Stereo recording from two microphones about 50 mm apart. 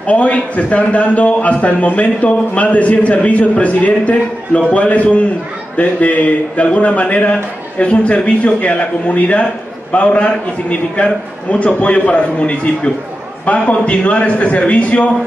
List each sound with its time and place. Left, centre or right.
0.0 s a man's voice: left